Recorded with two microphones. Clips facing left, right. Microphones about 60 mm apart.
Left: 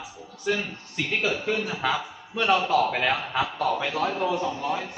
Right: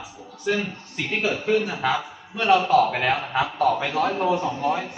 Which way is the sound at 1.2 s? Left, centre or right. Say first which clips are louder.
Right 4 dB; centre.